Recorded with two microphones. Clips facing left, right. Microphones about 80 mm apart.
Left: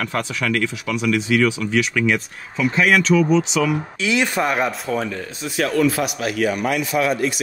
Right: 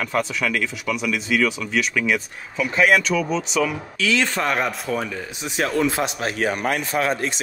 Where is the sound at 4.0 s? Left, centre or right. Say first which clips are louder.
Even; centre.